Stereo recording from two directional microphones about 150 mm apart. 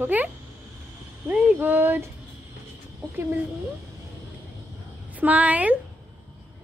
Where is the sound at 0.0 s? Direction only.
10° right (ahead or behind).